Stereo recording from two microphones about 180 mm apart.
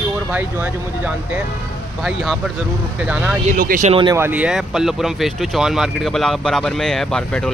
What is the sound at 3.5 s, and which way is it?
Speech, 50° right (ahead or behind).